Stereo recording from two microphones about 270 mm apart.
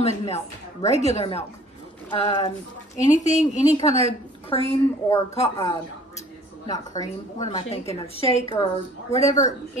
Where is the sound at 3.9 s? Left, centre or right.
Right.